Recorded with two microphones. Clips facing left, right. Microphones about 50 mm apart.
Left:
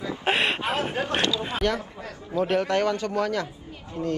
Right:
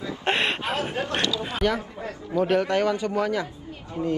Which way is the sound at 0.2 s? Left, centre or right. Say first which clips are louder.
Even; centre.